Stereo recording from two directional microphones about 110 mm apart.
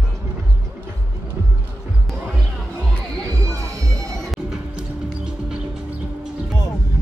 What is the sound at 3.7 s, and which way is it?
Music, 30° right (ahead or behind).